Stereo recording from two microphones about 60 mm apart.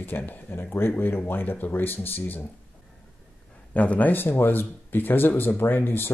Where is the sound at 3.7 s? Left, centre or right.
Left.